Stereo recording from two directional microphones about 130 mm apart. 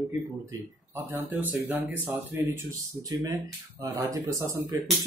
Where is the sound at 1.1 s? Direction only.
15° right (ahead or behind).